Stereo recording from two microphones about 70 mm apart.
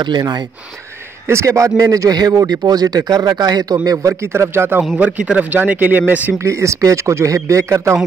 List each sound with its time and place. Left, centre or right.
0.0 s speech: right
1.2 s a man's voice: right
4.2 s speech: right
4.9 s a man's voice: right
6.3 s speech: right